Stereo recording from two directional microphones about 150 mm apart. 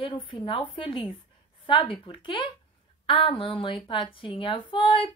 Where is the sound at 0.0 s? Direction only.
35° left (ahead or behind).